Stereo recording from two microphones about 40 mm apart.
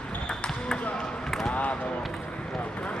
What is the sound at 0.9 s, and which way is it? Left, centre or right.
Basketball bounce, left.